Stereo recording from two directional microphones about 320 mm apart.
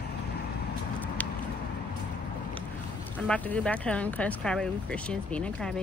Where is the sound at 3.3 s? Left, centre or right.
Centre.